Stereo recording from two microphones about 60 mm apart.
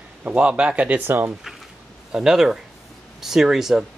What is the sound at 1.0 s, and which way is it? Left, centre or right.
Speech, right.